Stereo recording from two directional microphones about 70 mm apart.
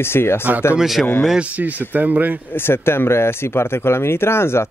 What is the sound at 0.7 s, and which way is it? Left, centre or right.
Speech, centre.